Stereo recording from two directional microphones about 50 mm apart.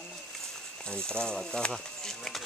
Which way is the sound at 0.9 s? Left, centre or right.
Centre.